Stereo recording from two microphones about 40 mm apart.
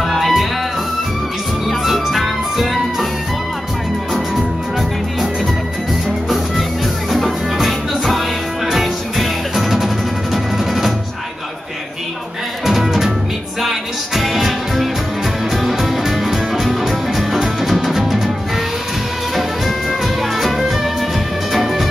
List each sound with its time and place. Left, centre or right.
0.0 s music: centre
1.7 s music: centre
6.2 s music: centre
12.6 s music: centre
19.3 s music: centre